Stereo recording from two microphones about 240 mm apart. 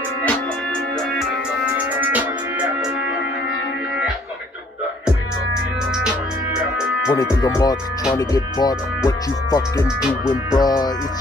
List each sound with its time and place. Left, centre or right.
2.0 s music: centre
6.0 s music: centre
7.2 s speech: centre